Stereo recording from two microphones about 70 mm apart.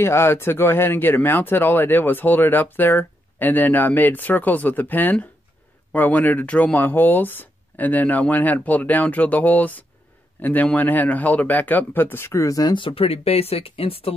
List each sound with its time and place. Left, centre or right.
0.0 s speech: left
12.4 s speech: left